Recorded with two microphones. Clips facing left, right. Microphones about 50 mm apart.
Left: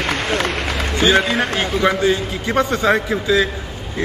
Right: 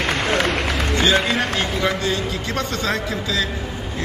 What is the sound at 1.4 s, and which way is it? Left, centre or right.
A man's voice, centre.